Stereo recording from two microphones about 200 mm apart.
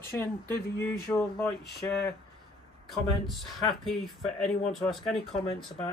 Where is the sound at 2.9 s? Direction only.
Centre (ahead or behind).